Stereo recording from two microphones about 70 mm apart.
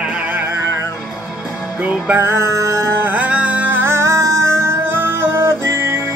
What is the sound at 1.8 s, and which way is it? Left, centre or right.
Music, right.